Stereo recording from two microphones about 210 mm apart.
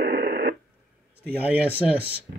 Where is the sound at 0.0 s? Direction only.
50° right (ahead or behind).